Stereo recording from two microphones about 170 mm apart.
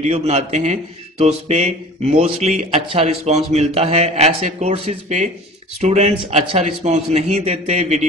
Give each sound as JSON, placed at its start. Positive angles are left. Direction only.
{"t": 0.0, "sound": "speech", "side_deg": -40}